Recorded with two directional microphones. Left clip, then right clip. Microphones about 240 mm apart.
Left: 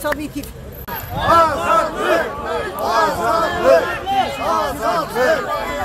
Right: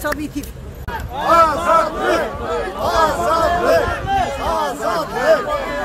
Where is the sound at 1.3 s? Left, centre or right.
Centre.